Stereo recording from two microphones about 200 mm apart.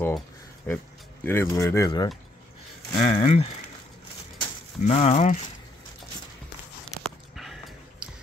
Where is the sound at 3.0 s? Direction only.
45° left (ahead or behind).